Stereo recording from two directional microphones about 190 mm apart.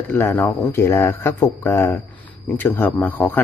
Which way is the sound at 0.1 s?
10° left (ahead or behind).